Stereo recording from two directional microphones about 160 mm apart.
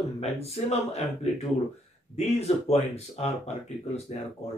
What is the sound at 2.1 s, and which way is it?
Speech, 40° left (ahead or behind).